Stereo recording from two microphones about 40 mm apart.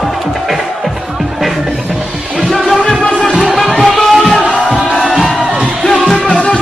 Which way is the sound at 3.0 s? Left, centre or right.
Left.